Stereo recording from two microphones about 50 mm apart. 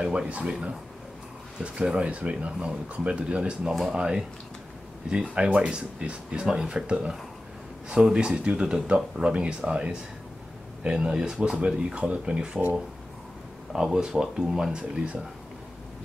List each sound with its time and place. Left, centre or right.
0.0 s speech: right
5.3 s speech: centre
13.7 s speech: centre